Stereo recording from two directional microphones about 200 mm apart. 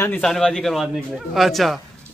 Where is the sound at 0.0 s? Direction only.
5° left (ahead or behind).